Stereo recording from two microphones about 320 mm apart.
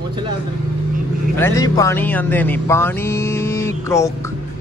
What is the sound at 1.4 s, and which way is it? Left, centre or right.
Speech, centre.